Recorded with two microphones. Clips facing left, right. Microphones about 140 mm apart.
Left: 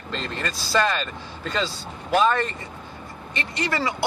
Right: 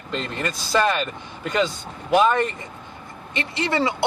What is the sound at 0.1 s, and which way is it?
Speech, 15° right (ahead or behind).